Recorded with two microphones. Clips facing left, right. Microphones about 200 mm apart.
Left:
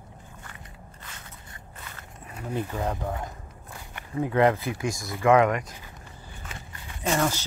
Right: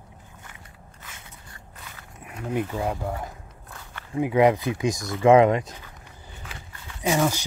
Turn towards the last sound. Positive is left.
turn(degrees=-10)  # may be behind; listen again after turning